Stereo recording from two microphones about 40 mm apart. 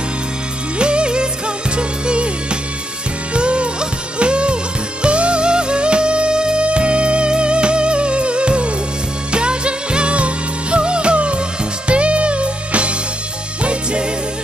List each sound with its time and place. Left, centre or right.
0.7 s music: right